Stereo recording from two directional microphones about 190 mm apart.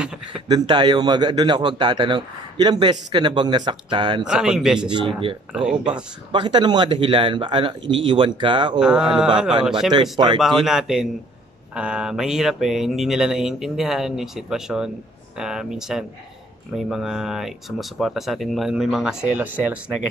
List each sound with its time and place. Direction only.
0.5 s speech: 20° right (ahead or behind)
4.3 s speech: 5° right (ahead or behind)
4.8 s speech: 25° right (ahead or behind)
5.5 s speech: 5° right (ahead or behind)
6.3 s speech: 25° right (ahead or behind)
8.7 s speech: 5° right (ahead or behind)
10.1 s speech: 25° right (ahead or behind)
10.4 s speech: centre (ahead or behind)